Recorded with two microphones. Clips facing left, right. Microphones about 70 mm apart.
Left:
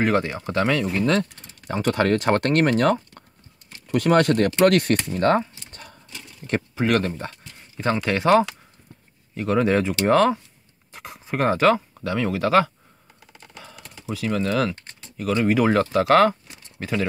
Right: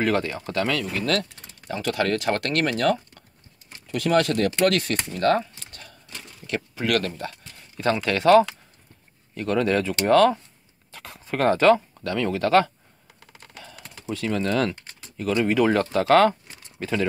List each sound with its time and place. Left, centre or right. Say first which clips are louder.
0.0 s speech: left 2 dB; left
1.7 s speech: left 4 dB; left
5.1 s speech: left 1 dB; left
5.7 s horse: left 3 dB; left
6.4 s speech: left 4 dB; left; by 12.7 s centre
13.6 s typing: left 1 dB; centre
15.7 s speech: left 1 dB; centre